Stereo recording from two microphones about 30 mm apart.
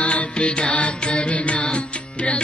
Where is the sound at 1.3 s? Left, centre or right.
Left.